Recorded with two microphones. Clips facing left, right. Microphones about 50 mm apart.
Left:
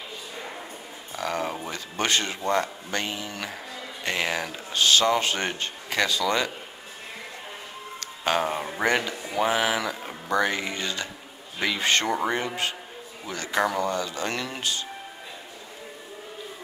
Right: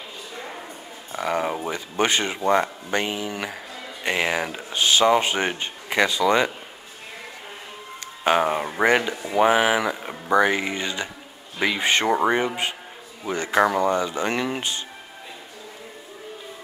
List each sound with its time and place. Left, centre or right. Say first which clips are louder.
1.1 s speech: right 4 dB; centre
8.2 s speech: right 5 dB; centre